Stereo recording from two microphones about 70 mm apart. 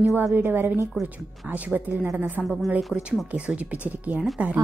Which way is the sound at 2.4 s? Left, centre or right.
Centre.